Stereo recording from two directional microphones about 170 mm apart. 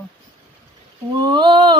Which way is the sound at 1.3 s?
25° right (ahead or behind).